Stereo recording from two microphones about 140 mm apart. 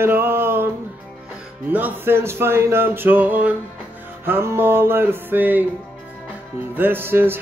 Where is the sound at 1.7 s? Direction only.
15° right (ahead or behind).